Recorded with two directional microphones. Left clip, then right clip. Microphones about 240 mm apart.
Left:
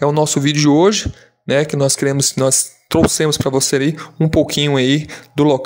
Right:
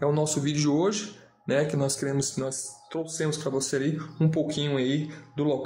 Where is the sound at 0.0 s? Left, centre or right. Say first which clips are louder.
Left 11 dB; left.